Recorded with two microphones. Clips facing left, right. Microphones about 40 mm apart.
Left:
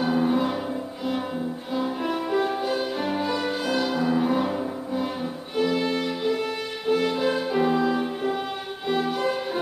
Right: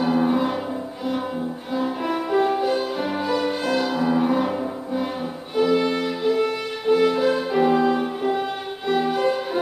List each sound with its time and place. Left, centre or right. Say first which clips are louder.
0.0 s music: right 2 dB; centre
1.7 s music: right 2 dB; centre